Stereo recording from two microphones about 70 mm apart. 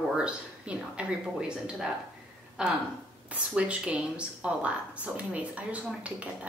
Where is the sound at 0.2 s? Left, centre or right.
Centre.